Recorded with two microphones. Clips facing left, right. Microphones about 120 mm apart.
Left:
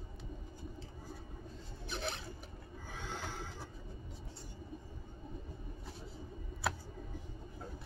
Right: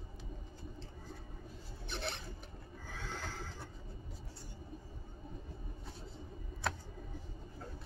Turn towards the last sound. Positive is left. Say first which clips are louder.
# left 1 dB
turn(degrees=5)  # may be behind; listen again after turning